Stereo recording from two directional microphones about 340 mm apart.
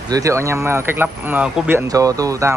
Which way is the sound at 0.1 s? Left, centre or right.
Centre.